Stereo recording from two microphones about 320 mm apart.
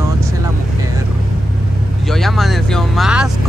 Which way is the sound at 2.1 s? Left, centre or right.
Centre.